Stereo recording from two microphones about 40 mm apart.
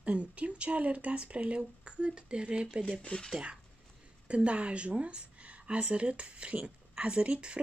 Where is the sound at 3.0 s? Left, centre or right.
Left.